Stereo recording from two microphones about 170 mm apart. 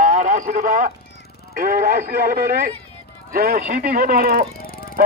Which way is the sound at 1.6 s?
55° right (ahead or behind).